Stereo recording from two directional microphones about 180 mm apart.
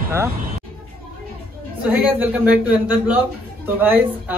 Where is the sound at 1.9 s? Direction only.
10° right (ahead or behind).